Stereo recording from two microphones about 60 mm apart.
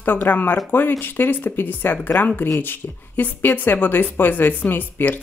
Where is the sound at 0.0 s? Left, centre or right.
Left.